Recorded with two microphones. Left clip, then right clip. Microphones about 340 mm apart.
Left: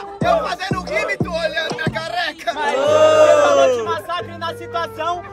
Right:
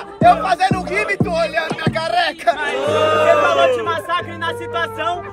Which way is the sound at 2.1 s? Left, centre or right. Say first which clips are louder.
Right 7 dB; centre.